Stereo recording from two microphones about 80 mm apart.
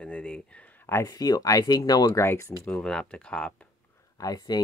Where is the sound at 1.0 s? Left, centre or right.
Left.